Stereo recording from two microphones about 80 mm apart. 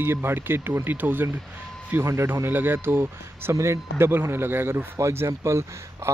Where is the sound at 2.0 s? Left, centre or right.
Right.